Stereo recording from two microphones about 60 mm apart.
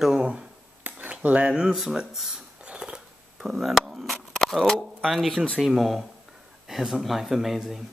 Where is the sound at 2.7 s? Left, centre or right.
Centre.